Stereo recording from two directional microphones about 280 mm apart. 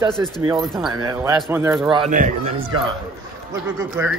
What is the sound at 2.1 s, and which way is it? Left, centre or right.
Speech, right.